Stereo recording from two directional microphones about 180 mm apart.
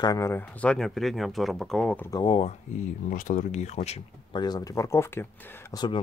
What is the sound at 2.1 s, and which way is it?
Speech, 30° left (ahead or behind).